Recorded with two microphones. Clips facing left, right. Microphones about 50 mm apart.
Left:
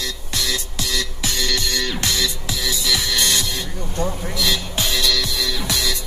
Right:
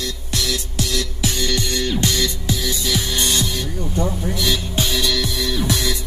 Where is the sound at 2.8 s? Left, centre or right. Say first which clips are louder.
Left 1 dB; left.